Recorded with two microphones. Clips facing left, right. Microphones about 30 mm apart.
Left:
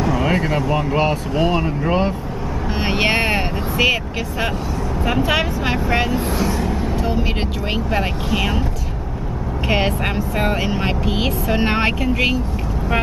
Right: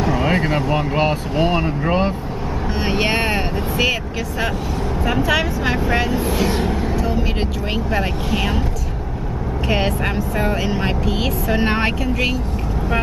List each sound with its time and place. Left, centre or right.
0.0 s speech: centre
2.8 s speech: centre
6.4 s speech: right
7.7 s speech: centre
9.7 s speech: centre